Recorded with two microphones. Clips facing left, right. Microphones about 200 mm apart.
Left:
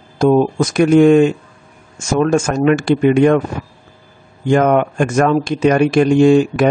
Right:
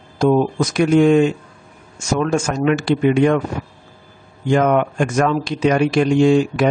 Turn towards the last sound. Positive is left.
turn(degrees=50)  # may be behind; listen again after turning